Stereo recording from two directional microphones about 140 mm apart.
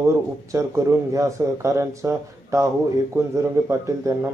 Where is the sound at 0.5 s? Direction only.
20° right (ahead or behind).